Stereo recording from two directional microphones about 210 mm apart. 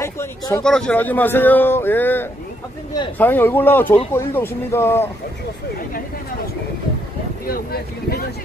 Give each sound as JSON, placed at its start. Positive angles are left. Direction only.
{"t": 0.0, "sound": "speech", "side_deg": 15}
{"t": 0.7, "sound": "a man's voice", "side_deg": 5}
{"t": 7.4, "sound": "speech", "side_deg": 45}